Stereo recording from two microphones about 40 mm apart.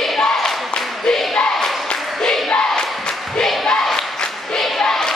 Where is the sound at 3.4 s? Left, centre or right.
Centre.